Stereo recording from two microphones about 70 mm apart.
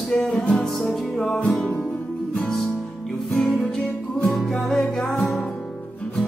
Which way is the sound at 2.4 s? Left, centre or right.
Centre.